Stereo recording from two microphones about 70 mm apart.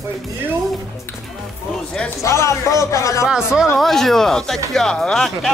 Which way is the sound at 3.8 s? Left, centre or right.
Centre.